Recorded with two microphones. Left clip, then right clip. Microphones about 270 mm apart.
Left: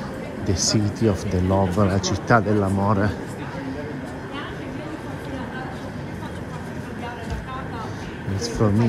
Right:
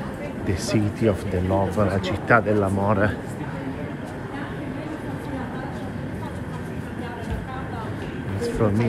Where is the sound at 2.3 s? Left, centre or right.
Centre.